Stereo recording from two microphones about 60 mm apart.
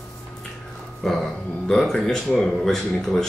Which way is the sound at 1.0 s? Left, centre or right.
Centre.